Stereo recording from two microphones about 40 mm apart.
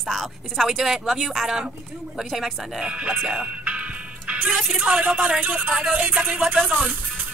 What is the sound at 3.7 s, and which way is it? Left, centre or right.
Music, right.